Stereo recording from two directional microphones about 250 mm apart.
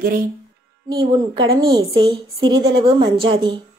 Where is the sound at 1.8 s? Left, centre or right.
Centre.